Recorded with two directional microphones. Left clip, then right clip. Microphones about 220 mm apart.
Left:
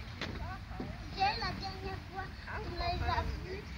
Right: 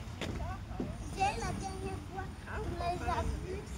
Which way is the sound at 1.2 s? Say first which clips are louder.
Left 1 dB; 40° right (ahead or behind).